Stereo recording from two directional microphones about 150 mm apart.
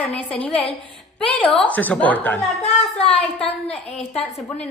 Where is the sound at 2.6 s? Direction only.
40° left (ahead or behind).